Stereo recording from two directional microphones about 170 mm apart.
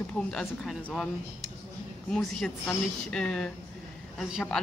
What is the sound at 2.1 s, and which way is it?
Speech, 5° left (ahead or behind).